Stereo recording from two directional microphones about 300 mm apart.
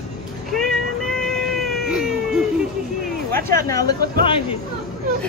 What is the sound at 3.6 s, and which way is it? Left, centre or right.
Speech, centre.